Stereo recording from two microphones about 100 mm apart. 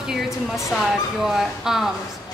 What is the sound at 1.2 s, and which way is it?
Speech, 5° right (ahead or behind).